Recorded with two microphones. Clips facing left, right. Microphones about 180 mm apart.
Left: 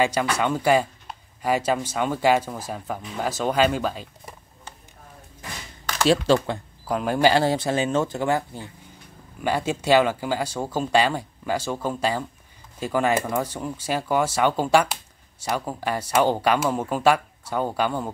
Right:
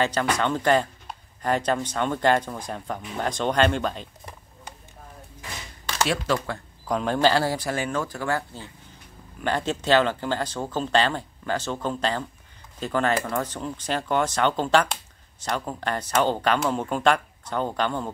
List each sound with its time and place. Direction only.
0.0 s speech: 10° left (ahead or behind)
6.0 s speech: 30° left (ahead or behind)
6.9 s speech: 5° left (ahead or behind)